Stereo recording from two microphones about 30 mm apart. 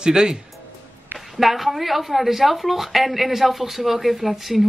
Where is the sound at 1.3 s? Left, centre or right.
Centre.